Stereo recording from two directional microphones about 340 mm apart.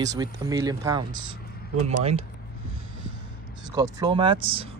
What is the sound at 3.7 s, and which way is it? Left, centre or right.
Speech, centre.